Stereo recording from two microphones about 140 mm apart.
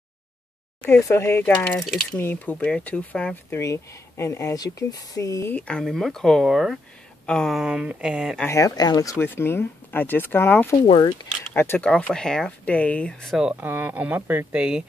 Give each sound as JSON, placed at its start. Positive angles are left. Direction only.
{"t": 1.0, "sound": "speech", "side_deg": 20}
{"t": 3.5, "sound": "speech", "side_deg": 20}
{"t": 8.5, "sound": "speech", "side_deg": 25}
{"t": 9.2, "sound": "speech", "side_deg": 15}
{"t": 10.9, "sound": "speech", "side_deg": 40}
{"t": 11.5, "sound": "speech", "side_deg": 15}